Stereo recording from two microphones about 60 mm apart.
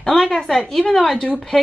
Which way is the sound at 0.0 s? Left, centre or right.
Centre.